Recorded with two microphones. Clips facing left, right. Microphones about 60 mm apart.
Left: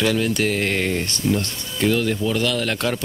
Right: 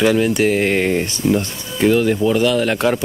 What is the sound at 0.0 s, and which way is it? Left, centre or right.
Speech, centre.